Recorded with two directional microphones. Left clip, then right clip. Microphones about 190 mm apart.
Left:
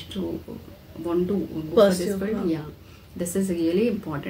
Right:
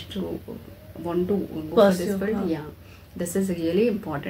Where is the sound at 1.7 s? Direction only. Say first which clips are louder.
Even; 10° left (ahead or behind).